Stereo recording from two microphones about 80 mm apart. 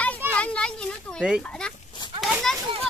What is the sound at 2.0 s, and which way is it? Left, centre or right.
Children playing, left.